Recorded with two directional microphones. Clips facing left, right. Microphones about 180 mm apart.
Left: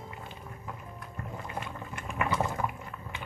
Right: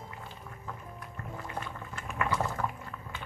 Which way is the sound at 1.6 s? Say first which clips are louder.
Left 1 dB; 20° left (ahead or behind).